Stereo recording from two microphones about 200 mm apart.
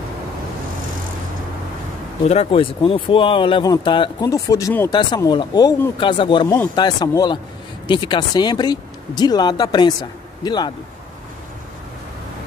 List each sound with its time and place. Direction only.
2.2 s speech: 30° left (ahead or behind)